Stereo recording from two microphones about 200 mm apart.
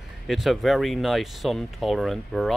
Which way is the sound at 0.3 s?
Centre (ahead or behind).